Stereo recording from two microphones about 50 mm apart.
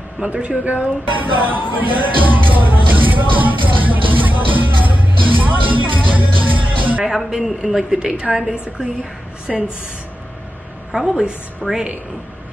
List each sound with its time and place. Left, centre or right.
0.2 s speech: right
1.2 s music: right
7.2 s speech: centre
10.9 s speech: centre